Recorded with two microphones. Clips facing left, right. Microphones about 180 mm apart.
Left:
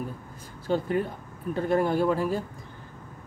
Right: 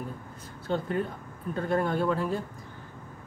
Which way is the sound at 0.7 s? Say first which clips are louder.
Left 3 dB; 10° left (ahead or behind).